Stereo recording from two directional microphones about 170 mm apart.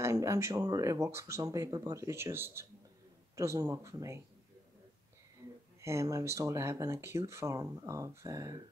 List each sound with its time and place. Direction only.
0.0 s speech: 15° right (ahead or behind)
5.8 s speech: 15° right (ahead or behind)